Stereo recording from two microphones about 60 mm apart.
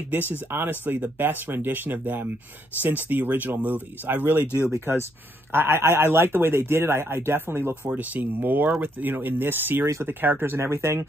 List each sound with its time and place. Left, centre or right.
0.1 s speech: right
4.7 s speech: right
10.7 s speech: right